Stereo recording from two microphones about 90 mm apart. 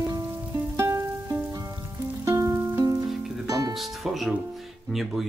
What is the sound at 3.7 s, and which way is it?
Music, centre (ahead or behind).